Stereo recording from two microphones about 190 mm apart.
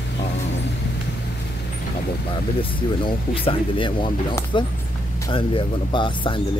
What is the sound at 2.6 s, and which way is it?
Speech, 25° left (ahead or behind).